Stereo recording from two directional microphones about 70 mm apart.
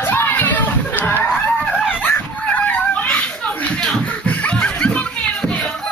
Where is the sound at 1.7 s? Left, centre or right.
Centre.